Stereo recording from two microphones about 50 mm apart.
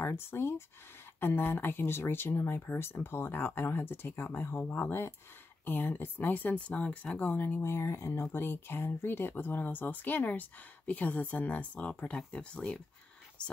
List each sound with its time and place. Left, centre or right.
0.0 s speech: left; by 12.8 s centre